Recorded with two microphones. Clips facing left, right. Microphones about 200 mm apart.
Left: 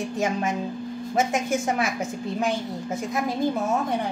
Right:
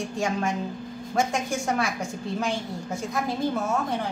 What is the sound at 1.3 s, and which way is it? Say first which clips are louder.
Speech: left 2 dB; 20° left (ahead or behind).